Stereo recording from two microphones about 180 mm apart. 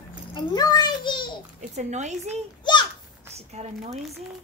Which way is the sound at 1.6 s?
40° right (ahead or behind).